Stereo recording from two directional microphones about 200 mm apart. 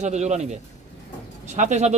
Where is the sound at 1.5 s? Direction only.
35° right (ahead or behind).